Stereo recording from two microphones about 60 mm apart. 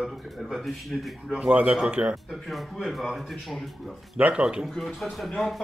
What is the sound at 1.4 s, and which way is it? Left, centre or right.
Speech, right.